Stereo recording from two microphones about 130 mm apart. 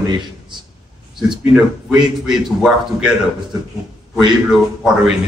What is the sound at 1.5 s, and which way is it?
A man's voice, 5° right (ahead or behind).